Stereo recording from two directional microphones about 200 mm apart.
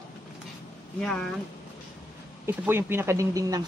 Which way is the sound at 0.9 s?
5° left (ahead or behind).